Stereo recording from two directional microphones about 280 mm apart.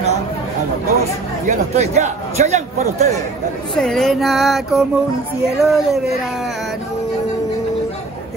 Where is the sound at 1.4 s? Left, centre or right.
Right.